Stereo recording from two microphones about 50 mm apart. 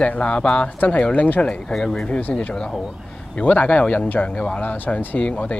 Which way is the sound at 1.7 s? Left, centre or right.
Centre.